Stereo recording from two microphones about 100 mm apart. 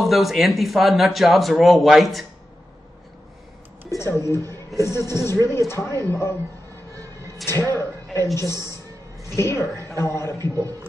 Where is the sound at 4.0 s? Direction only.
30° left (ahead or behind).